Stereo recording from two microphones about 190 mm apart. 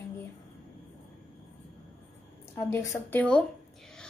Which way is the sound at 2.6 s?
15° left (ahead or behind).